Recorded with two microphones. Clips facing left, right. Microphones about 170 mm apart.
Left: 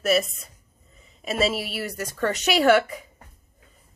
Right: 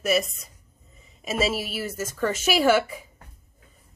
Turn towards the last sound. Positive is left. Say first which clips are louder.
# left 2 dB
turn(degrees=-5)  # may be behind; listen again after turning